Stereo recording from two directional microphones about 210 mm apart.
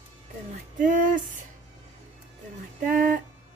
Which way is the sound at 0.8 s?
35° right (ahead or behind).